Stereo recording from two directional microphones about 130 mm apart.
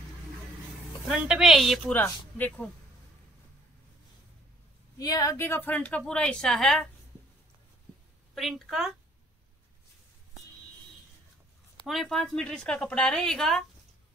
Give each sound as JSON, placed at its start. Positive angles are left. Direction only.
{"t": 1.0, "sound": "a woman's voice", "side_deg": -5}
{"t": 2.3, "sound": "a woman's voice", "side_deg": 15}
{"t": 4.9, "sound": "a woman's voice", "side_deg": 30}
{"t": 5.7, "sound": "a woman's voice", "side_deg": 10}
{"t": 8.4, "sound": "a woman's voice", "side_deg": 0}
{"t": 11.8, "sound": "a woman's voice", "side_deg": 0}